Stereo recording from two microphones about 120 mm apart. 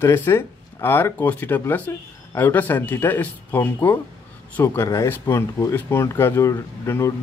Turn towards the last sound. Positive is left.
turn(degrees=25)  # may be behind; listen again after turning